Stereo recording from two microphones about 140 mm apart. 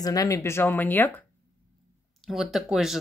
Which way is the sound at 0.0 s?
25° left (ahead or behind).